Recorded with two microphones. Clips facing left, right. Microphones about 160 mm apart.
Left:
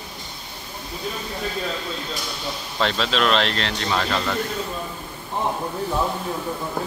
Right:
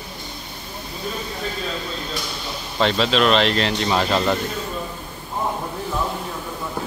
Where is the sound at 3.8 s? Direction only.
20° right (ahead or behind).